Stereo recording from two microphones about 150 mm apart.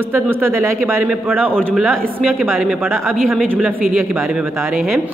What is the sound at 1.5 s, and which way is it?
Speech, 5° left (ahead or behind).